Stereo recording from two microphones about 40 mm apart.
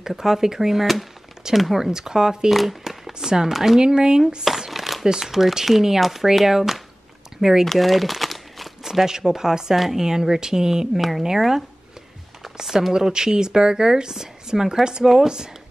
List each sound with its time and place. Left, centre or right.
0.0 s speech: centre
1.9 s speech: centre
2.5 s speech: centre
3.1 s speech: centre
4.5 s shuffling cards: centre
5.1 s speech: centre
7.6 s crumpling: centre
8.8 s speech: centre
11.0 s speech: centre